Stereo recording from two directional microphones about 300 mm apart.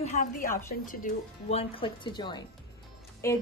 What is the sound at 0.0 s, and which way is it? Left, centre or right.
A woman's voice, left.